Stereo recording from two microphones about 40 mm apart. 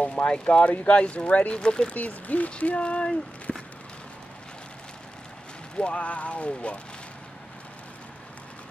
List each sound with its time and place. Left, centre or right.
0.0 s speech: left
1.5 s speech: left
2.0 s speech: left
3.5 s a sound: centre
5.8 s speech: left